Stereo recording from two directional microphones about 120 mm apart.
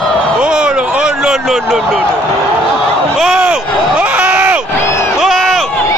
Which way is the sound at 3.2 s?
5° right (ahead or behind).